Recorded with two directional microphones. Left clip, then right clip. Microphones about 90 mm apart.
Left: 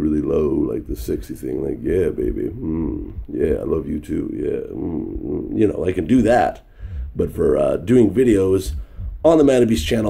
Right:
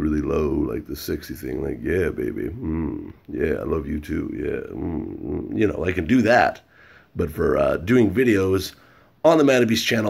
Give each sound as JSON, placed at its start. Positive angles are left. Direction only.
{"t": 0.0, "sound": "speech", "side_deg": 30}